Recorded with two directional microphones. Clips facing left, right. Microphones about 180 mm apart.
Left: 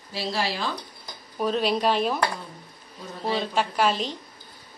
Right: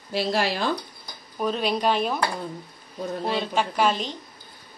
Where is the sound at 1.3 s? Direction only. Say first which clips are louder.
Left 1 dB; centre (ahead or behind).